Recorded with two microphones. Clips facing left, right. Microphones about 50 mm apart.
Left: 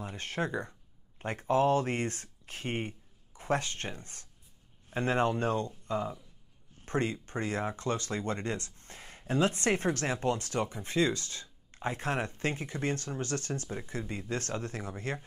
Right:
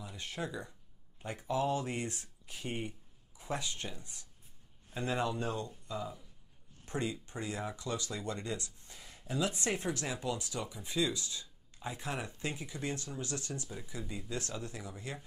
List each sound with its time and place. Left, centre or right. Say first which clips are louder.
0.0 s speech: left 6 dB; left